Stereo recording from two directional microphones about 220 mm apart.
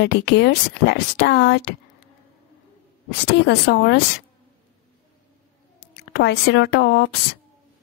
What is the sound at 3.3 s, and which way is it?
Speech, 50° left (ahead or behind).